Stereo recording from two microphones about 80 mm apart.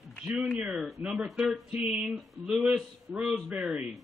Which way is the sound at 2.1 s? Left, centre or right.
Centre.